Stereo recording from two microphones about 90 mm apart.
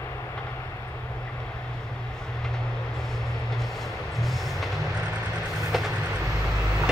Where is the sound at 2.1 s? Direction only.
5° left (ahead or behind).